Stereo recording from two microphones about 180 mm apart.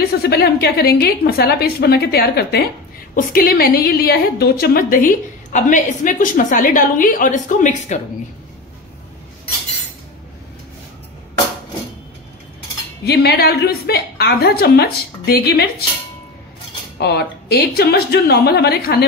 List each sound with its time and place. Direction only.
0.2 s a woman's voice: 60° left (ahead or behind); by 8.0 s 40° left (ahead or behind)
13.0 s a woman's voice: 65° left (ahead or behind)
17.0 s a woman's voice: 65° left (ahead or behind)